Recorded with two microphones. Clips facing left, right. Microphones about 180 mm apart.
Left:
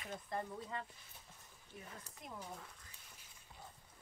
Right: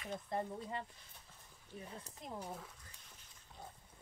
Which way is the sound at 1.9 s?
30° right (ahead or behind).